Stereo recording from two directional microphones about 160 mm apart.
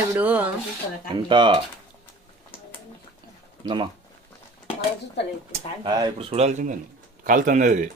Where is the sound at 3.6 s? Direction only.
30° right (ahead or behind).